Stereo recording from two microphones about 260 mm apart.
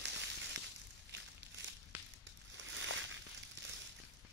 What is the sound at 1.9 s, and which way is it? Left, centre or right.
Crushing, centre.